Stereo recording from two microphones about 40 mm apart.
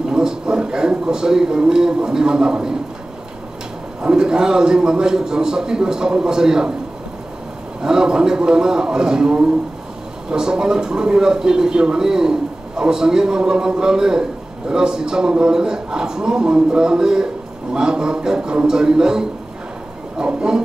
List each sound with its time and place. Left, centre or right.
0.1 s a man's voice: centre
4.0 s speech: centre
7.8 s a man's voice: centre